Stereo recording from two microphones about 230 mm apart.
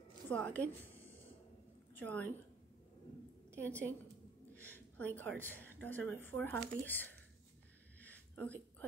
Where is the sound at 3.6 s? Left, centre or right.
Centre.